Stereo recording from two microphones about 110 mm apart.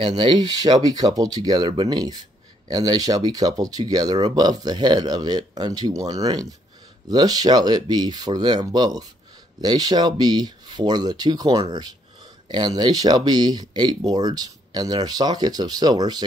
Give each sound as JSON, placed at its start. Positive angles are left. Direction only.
{"t": 0.1, "sound": "speech", "side_deg": -40}